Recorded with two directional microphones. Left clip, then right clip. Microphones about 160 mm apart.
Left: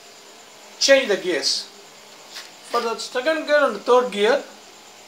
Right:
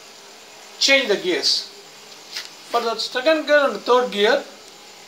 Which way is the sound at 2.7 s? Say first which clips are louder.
Right 2 dB; 20° right (ahead or behind).